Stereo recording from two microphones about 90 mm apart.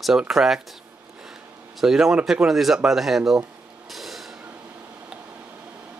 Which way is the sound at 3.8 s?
Centre (ahead or behind).